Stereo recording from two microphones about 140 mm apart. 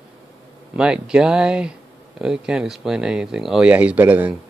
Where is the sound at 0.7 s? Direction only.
5° right (ahead or behind).